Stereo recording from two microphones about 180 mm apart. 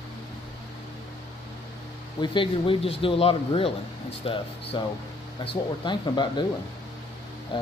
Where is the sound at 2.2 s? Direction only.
30° left (ahead or behind).